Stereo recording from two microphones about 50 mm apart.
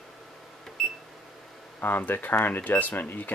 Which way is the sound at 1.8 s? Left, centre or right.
Left.